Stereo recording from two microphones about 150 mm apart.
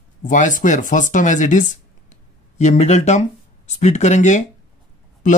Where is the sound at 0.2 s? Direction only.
60° left (ahead or behind).